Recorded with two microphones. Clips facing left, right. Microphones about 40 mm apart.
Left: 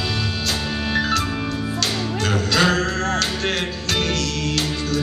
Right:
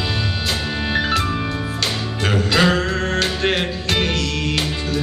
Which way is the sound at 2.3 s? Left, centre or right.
Centre.